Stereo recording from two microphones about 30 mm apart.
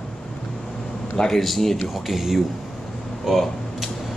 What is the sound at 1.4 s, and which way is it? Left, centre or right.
Speech, centre.